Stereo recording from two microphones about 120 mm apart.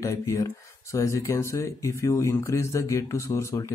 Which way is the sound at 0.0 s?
25° left (ahead or behind).